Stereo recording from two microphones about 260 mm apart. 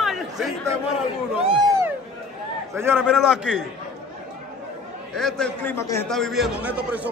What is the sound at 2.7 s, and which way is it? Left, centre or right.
Speech, centre.